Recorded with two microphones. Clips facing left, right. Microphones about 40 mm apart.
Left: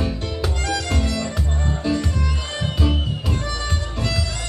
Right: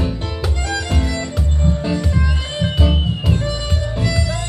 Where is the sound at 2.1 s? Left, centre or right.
Centre.